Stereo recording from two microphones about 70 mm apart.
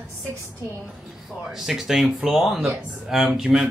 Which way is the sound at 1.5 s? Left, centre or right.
Centre.